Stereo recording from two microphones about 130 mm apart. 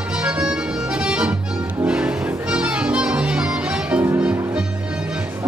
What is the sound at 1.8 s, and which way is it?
Music, 10° right (ahead or behind).